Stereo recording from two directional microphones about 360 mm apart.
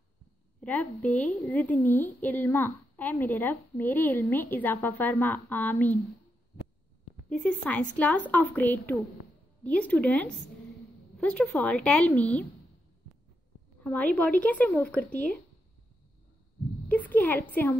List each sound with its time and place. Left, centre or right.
0.6 s a woman's voice: centre
7.2 s a woman's voice: centre
13.8 s a woman's voice: centre
16.9 s a woman's voice: centre